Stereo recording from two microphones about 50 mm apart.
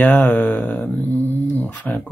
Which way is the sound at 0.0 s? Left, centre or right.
Left.